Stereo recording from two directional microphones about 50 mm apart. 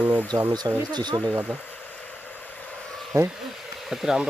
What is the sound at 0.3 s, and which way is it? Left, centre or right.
Speech, left.